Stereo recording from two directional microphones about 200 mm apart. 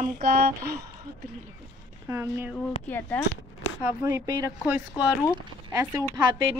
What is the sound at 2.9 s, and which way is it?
Speech, 10° left (ahead or behind).